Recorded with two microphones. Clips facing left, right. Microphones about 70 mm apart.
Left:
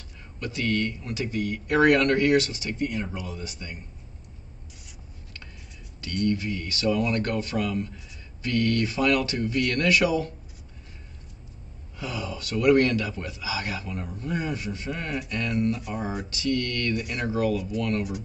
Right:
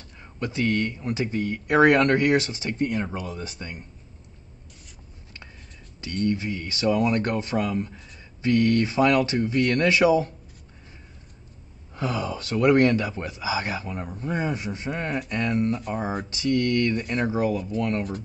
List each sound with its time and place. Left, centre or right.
0.4 s speech: right
2.8 s speech: right
5.9 s speech: right
11.9 s speech: right